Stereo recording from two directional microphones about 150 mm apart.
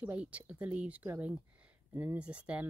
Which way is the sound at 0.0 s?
10° right (ahead or behind).